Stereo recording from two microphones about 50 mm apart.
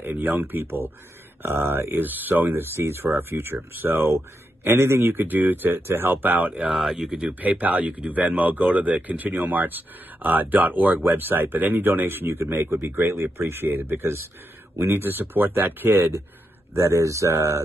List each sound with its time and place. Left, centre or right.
0.0 s speech: right
4.6 s a man's voice: right
5.0 s speech: right
6.7 s speech: centre
7.3 s speech: right
11.1 s a man's voice: right
17.0 s speech: right